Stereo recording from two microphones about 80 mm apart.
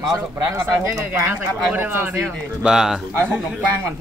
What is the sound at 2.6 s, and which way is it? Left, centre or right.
Speech, centre.